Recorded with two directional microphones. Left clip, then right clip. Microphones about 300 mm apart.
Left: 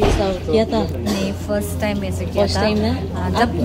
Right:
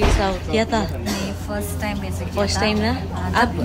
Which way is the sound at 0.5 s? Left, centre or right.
Right.